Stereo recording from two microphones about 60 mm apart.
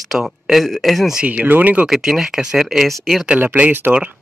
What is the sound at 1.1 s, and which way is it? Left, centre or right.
Speech, centre.